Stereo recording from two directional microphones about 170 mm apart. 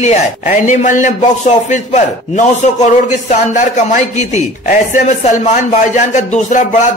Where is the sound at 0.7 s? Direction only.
45° left (ahead or behind).